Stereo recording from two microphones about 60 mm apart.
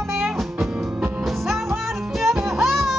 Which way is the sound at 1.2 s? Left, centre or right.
Centre.